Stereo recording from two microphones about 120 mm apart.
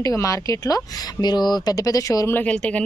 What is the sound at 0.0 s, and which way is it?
Speech, 25° left (ahead or behind).